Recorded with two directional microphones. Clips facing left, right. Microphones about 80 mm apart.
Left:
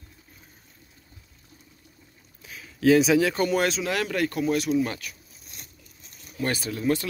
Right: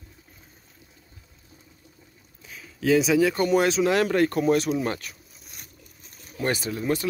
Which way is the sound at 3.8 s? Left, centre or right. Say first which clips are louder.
Right 6 dB; right.